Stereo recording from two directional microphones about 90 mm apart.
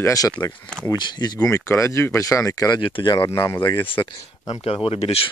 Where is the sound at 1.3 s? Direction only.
35° left (ahead or behind).